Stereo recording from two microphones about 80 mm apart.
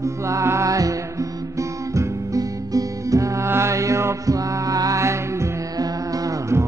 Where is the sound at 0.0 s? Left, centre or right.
Right.